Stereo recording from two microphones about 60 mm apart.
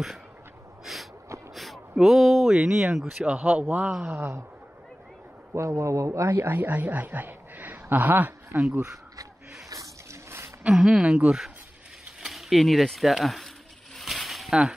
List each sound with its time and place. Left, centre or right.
0.9 s a sound: centre
2.5 s speech: centre
3.3 s speech: right
4.1 s speech: right
5.5 s speech: right
6.2 s speech: right
10.7 s speech: centre
11.1 s speech: centre
13.9 s mechanisms: centre